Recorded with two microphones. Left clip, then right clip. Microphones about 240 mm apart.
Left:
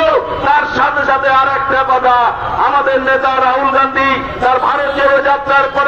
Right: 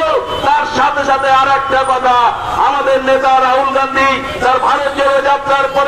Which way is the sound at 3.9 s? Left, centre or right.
Left.